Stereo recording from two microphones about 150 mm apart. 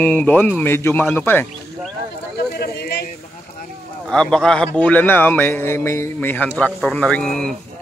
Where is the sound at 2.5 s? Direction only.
90° left.